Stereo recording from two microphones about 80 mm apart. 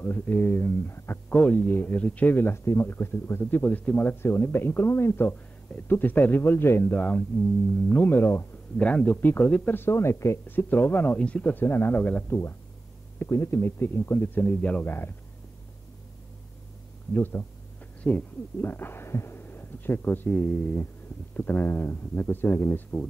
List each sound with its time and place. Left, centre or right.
0.0 s speech: left
1.3 s speech: centre
8.7 s speech: centre
14.9 s speech: left
17.1 s speech: left